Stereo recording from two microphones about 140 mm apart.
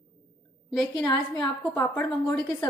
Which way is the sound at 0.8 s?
30° left (ahead or behind).